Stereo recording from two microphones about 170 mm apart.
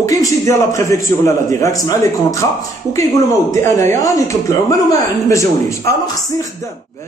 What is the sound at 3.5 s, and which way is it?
A man's voice, 15° left (ahead or behind).